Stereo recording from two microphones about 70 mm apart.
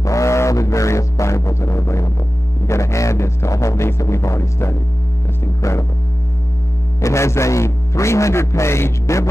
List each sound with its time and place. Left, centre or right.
0.0 s music: left
5.6 s a man's voice: left
7.0 s a man's voice: left